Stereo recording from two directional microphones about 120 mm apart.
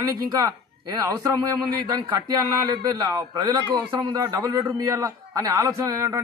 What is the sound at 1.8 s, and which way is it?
A man's voice, 35° right (ahead or behind).